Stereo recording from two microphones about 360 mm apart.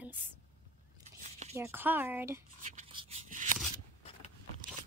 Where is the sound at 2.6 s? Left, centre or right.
Centre.